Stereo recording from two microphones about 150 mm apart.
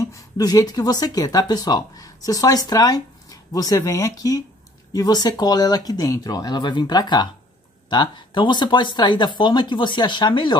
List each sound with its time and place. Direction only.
0.0 s speech: 25° left (ahead or behind)